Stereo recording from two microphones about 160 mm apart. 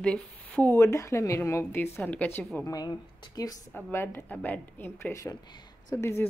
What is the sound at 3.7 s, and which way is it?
Speech, 15° left (ahead or behind).